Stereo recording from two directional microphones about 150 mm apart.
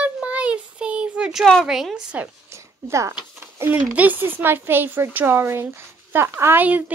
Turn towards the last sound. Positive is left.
turn(degrees=-10)  # may be behind; listen again after turning